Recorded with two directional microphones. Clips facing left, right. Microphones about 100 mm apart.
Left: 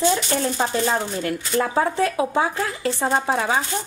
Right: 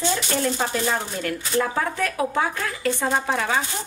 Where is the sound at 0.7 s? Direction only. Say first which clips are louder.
Left 3 dB; 30° left (ahead or behind).